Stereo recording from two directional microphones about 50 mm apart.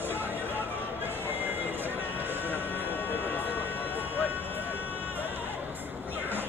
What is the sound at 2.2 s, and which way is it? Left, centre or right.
Vehicle, right.